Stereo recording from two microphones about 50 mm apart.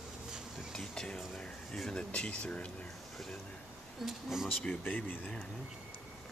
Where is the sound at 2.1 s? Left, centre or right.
Left.